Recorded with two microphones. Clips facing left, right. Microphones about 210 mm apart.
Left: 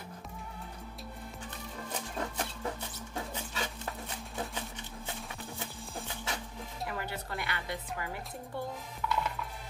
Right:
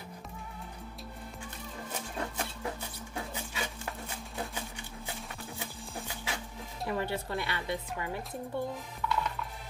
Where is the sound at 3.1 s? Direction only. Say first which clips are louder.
Even; 10° right (ahead or behind).